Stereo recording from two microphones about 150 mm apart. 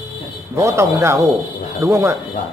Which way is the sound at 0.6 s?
20° right (ahead or behind).